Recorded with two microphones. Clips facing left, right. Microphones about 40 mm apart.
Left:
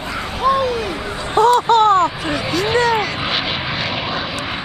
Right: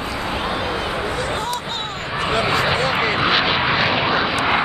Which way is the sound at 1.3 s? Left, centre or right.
Left.